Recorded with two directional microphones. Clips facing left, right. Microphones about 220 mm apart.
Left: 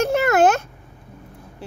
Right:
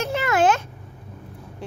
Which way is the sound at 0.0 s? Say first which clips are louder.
Left 4 dB; 45° left (ahead or behind).